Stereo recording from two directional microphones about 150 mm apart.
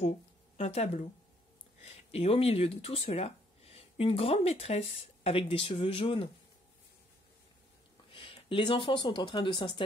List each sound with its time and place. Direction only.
0.6 s speech: 45° left (ahead or behind)
8.1 s speech: 35° left (ahead or behind)